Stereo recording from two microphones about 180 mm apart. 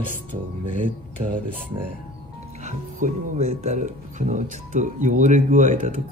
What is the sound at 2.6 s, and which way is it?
Speech, 40° right (ahead or behind).